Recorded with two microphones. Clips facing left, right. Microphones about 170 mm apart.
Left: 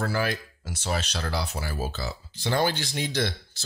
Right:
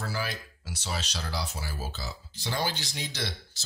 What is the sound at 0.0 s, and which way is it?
Speech, 60° left (ahead or behind).